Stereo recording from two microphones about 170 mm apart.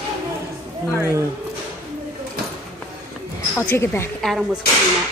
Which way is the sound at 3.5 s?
15° left (ahead or behind).